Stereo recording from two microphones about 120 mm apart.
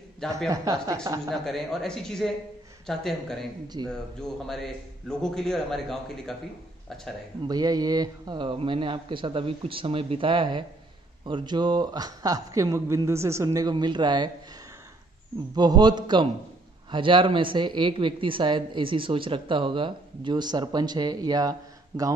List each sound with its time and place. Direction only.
0.5 s speech: 30° right (ahead or behind)
1.3 s a man's voice: centre (ahead or behind)
3.6 s speech: 35° right (ahead or behind)
4.2 s a man's voice: 5° left (ahead or behind)
7.4 s a man's voice: 35° right (ahead or behind)
15.5 s speech: 35° right (ahead or behind)